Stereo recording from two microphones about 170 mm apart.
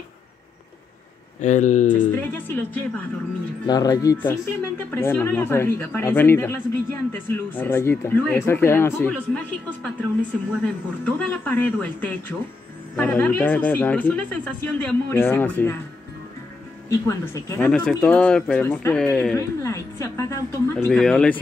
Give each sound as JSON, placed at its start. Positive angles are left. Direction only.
{"t": 1.4, "sound": "speech", "side_deg": 45}
{"t": 1.9, "sound": "speech", "side_deg": 10}
{"t": 3.6, "sound": "speech", "side_deg": 20}
{"t": 17.1, "sound": "speech", "side_deg": 15}
{"t": 18.9, "sound": "speech", "side_deg": 5}
{"t": 19.3, "sound": "speech", "side_deg": 15}
{"t": 20.9, "sound": "speech", "side_deg": 5}